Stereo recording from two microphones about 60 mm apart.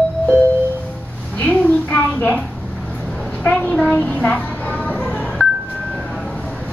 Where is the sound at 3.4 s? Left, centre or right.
Left.